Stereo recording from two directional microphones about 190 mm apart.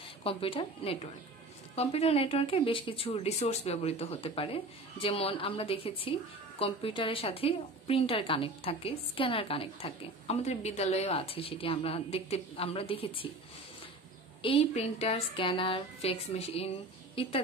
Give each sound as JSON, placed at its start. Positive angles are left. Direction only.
{"t": 0.2, "sound": "a woman's voice", "side_deg": 30}
{"t": 14.4, "sound": "speech", "side_deg": 30}